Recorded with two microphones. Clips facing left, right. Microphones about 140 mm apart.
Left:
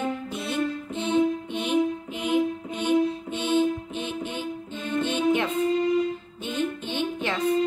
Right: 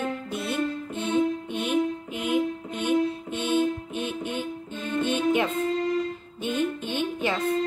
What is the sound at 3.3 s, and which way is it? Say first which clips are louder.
Music: even; 50° right (ahead or behind).